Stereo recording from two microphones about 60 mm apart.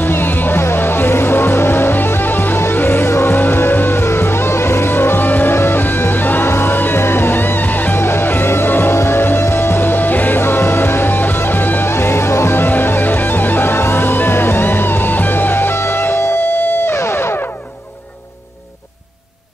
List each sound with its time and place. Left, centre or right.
0.0 s music: left